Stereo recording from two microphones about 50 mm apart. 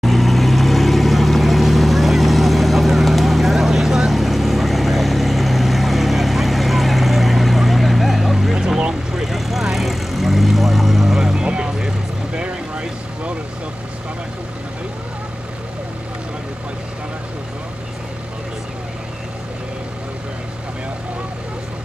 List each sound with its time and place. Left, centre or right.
0.0 s vehicle: centre; by 13.3 s right